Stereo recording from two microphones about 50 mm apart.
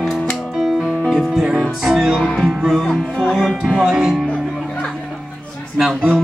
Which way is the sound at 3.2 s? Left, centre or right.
Centre.